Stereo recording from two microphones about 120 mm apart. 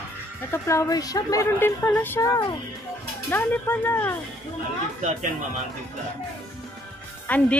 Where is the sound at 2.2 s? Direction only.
30° left (ahead or behind).